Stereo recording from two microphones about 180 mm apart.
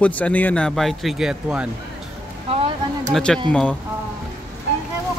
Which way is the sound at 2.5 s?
30° right (ahead or behind).